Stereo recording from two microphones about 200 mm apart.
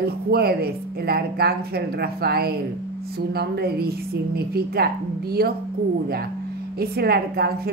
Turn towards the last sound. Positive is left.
turn(degrees=-50)  # may be behind; listen again after turning